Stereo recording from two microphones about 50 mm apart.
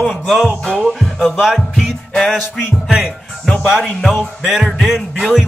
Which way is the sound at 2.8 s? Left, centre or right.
Centre.